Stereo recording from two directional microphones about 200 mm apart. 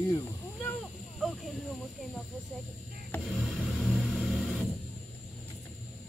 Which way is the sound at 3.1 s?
Centre (ahead or behind).